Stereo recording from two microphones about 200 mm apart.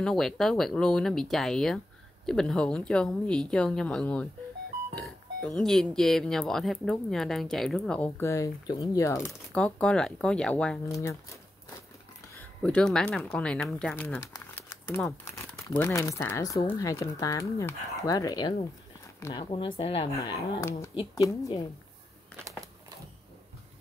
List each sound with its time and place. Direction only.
0.0 s speech: centre (ahead or behind)
10.9 s speech: 15° left (ahead or behind)
12.4 s speech: 5° left (ahead or behind)
15.6 s speech: 15° left (ahead or behind)
19.1 s a sound: 15° left (ahead or behind)
19.5 s speech: 25° left (ahead or behind)